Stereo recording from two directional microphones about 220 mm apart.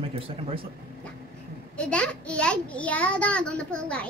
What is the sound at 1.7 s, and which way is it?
A child's voice, 5° left (ahead or behind).